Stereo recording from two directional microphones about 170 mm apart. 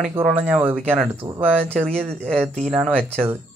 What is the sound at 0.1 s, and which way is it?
Speech, 10° right (ahead or behind).